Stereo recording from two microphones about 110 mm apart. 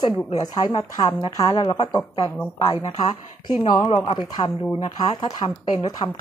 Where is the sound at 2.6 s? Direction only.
35° left (ahead or behind).